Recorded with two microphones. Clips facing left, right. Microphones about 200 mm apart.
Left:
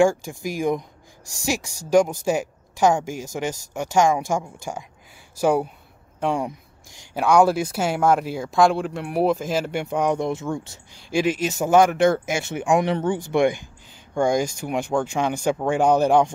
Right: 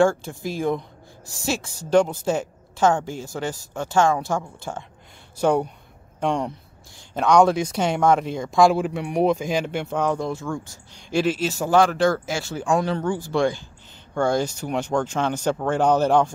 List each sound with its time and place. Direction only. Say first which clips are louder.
0.0 s speech: left 1 dB; 10° left (ahead or behind)
11.0 s speech: even; 10° left (ahead or behind)